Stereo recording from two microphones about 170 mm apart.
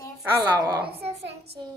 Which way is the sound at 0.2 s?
20° right (ahead or behind).